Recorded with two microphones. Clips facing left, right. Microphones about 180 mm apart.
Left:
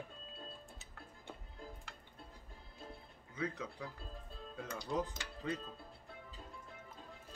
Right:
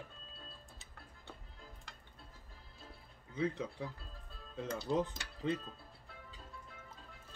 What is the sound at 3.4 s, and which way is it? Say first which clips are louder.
Speech: right 4 dB; 25° right (ahead or behind).